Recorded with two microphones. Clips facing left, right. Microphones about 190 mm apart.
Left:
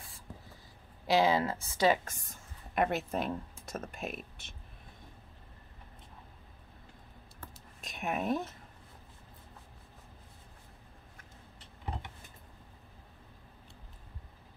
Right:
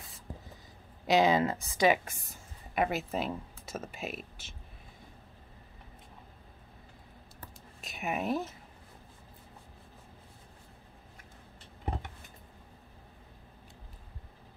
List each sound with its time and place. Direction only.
1.0 s a woman's voice: 20° right (ahead or behind); by 4.6 s 5° right (ahead or behind)
7.8 s speech: 5° right (ahead or behind)